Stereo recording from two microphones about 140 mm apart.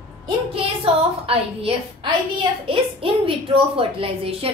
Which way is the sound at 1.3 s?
45° right (ahead or behind).